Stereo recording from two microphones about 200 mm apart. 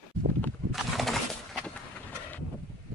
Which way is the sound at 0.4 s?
Centre (ahead or behind).